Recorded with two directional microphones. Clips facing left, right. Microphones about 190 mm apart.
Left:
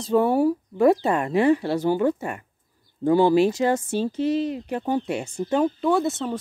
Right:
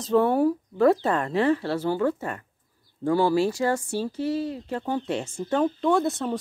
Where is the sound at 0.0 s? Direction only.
10° left (ahead or behind).